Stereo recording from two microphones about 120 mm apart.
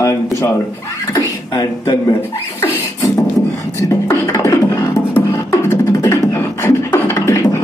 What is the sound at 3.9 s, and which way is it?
Beatboxing, 25° left (ahead or behind).